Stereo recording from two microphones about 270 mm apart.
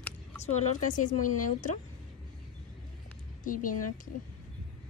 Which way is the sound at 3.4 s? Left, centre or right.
Left.